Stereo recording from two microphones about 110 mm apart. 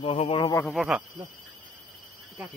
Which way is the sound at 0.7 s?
5° right (ahead or behind).